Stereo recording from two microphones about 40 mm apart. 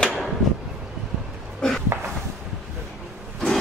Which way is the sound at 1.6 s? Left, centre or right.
Centre.